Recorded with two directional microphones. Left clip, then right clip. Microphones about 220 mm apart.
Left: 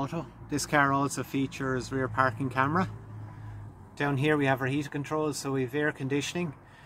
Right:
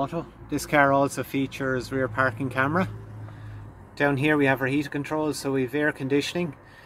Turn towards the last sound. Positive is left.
turn(degrees=0)  # may be behind; listen again after turning